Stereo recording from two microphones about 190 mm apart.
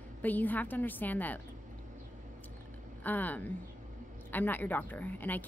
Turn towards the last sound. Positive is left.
turn(degrees=10)  # may be behind; listen again after turning